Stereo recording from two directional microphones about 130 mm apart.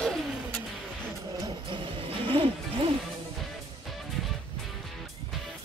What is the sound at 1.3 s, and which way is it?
Music, 35° right (ahead or behind).